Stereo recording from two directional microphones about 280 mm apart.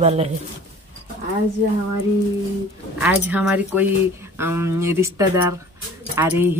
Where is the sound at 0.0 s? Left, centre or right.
Right.